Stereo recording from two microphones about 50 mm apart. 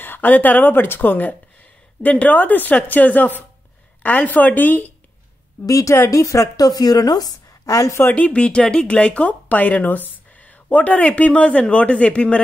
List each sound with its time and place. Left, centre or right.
0.0 s a woman's voice: left
5.7 s speech: left
7.6 s speech: left
8.1 s speech: left